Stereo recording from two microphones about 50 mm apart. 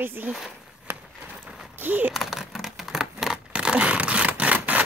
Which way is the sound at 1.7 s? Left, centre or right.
Right.